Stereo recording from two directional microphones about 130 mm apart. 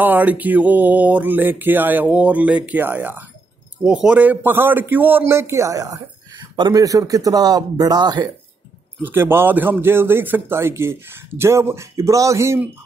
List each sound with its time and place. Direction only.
0.0 s mantra: 10° right (ahead or behind)
6.5 s speech: 30° right (ahead or behind)
9.0 s speech: 15° right (ahead or behind)